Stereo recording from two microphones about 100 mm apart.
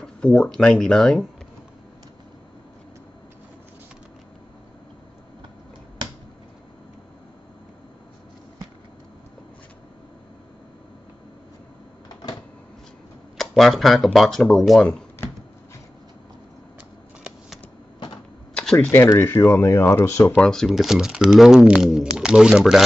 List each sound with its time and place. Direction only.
0.0 s speech: 10° left (ahead or behind)
13.4 s speech: centre (ahead or behind)
18.5 s a sound: 10° left (ahead or behind)
18.9 s speech: 25° left (ahead or behind)
20.4 s speech: centre (ahead or behind)